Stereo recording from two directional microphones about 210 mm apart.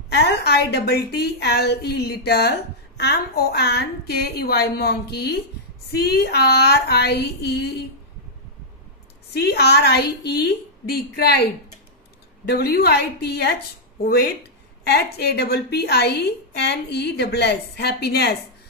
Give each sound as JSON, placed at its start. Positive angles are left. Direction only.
{"t": 0.1, "sound": "a woman's voice", "side_deg": 50}
{"t": 9.3, "sound": "a woman's voice", "side_deg": 50}
{"t": 12.4, "sound": "a woman's voice", "side_deg": 50}
{"t": 14.9, "sound": "a woman's voice", "side_deg": 50}